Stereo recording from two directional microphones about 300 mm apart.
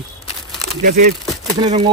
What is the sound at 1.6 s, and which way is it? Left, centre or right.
Speech, centre.